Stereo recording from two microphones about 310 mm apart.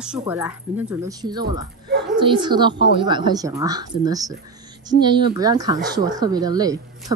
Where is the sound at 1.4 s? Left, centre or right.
Right.